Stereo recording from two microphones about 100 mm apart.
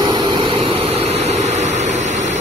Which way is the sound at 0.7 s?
90° right.